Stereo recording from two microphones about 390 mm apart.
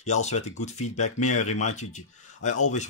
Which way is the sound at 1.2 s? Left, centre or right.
Left.